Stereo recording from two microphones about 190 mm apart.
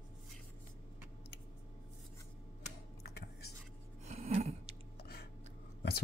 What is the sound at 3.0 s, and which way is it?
Whispering, 60° left (ahead or behind).